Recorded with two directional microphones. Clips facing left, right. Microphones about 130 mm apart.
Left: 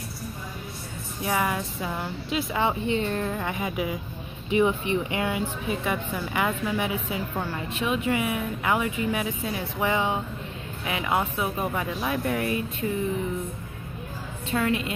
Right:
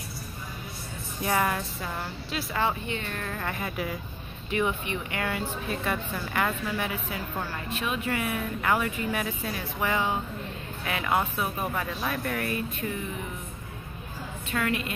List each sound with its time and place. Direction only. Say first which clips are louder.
1.2 s speech: even; 5° left (ahead or behind); by 3.3 s 25° left (ahead or behind)
3.3 s speech: left 4 dB; 15° left (ahead or behind)
4.5 s speech: left 6 dB; 25° left (ahead or behind)
14.5 s speech: left 4 dB; 25° left (ahead or behind)